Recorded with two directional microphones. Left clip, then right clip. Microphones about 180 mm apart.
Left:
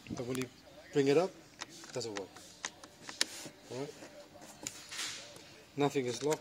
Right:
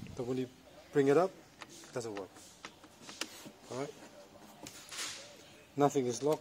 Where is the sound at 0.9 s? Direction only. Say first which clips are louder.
Right 1 dB; 5° left (ahead or behind).